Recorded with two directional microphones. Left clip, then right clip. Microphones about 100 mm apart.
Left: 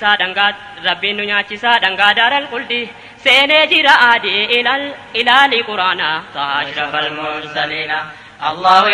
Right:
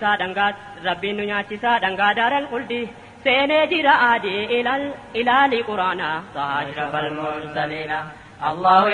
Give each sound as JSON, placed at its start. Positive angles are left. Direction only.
{"t": 0.0, "sound": "a woman's voice", "side_deg": 35}